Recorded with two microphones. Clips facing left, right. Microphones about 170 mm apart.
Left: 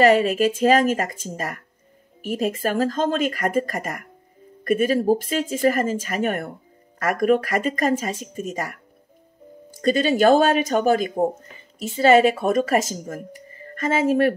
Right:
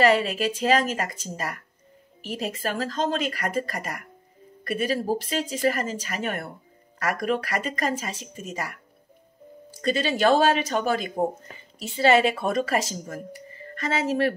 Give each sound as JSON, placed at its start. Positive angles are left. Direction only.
{"t": 0.0, "sound": "speech", "side_deg": 45}